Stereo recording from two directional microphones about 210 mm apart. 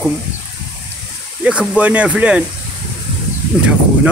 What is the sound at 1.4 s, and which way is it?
Speech, 5° right (ahead or behind).